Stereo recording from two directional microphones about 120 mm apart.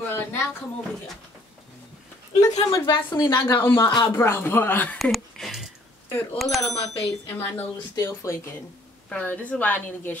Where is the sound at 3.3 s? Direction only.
20° left (ahead or behind).